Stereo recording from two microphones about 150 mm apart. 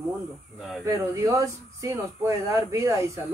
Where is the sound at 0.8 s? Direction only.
20° right (ahead or behind).